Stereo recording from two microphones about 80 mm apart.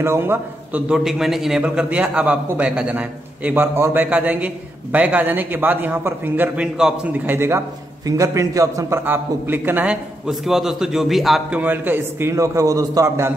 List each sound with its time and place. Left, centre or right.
0.0 s a man's voice: right
0.8 s a man's voice: centre
1.6 s a man's voice: centre
3.7 s a man's voice: right
4.0 s a man's voice: centre
6.6 s a man's voice: centre
7.2 s a man's voice: right
8.2 s a man's voice: right
9.0 s a man's voice: right
9.8 s a man's voice: centre
11.5 s a man's voice: right
12.3 s a man's voice: right